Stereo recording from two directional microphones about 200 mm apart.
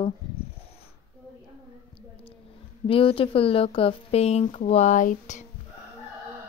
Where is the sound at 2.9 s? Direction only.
25° left (ahead or behind).